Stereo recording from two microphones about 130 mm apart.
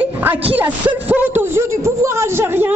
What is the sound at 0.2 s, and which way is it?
A woman's voice, 15° right (ahead or behind).